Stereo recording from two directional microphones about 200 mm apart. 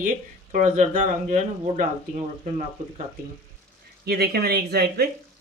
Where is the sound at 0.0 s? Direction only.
40° right (ahead or behind).